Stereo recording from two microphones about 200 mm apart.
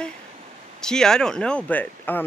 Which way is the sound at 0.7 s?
5° left (ahead or behind).